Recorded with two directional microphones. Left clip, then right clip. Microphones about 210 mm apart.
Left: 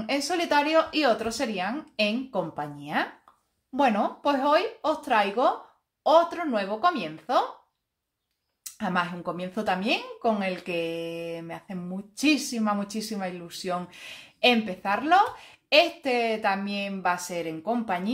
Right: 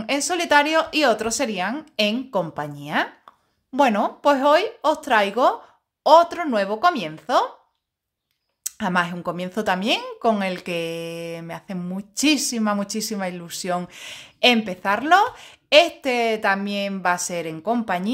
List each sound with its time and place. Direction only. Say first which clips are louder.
0.0 s a woman's voice: right 4 dB; 40° right (ahead or behind)
8.6 s speech: right 5 dB; 40° right (ahead or behind)